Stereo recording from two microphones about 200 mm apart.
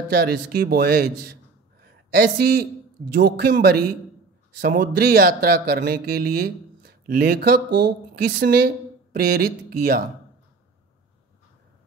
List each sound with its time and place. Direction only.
0.1 s a man's voice: 50° right (ahead or behind)